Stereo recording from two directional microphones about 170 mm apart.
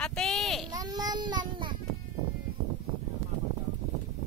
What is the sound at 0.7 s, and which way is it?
Child singing, 25° right (ahead or behind).